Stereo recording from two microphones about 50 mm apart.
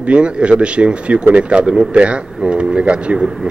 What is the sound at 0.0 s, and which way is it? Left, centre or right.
Speech, right.